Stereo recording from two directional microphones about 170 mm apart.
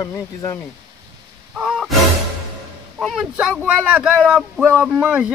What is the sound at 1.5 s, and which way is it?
Music, 5° right (ahead or behind).